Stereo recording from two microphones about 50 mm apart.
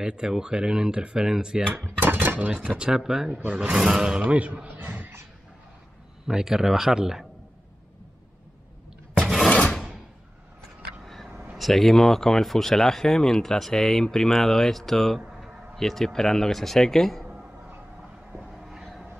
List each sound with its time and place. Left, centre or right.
0.0 s speech: centre
1.7 s cutlery: right
2.8 s speech: centre; by 4.6 s right
4.7 s a sound: right
6.2 s speech: centre
9.5 s filing: left
11.5 s speech: centre
18.6 s vehicle: centre